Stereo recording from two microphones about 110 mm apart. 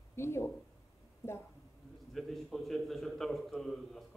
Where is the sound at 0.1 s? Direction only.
25° left (ahead or behind).